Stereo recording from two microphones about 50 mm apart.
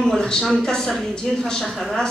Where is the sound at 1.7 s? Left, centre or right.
Centre.